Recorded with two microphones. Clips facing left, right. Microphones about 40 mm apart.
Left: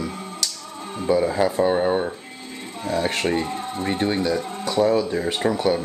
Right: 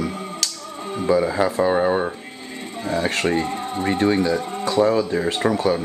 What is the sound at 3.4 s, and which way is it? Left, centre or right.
Speech, right.